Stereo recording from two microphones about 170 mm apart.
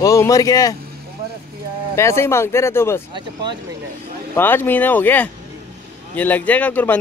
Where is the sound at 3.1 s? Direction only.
25° right (ahead or behind).